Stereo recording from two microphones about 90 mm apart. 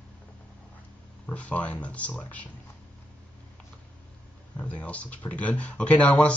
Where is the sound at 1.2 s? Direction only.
15° left (ahead or behind).